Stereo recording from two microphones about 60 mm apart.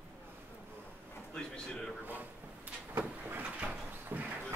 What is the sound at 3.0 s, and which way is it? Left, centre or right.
Vehicle, right.